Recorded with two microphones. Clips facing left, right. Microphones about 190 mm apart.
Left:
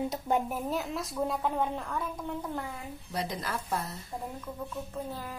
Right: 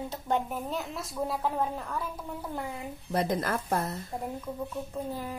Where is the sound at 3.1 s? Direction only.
50° right (ahead or behind).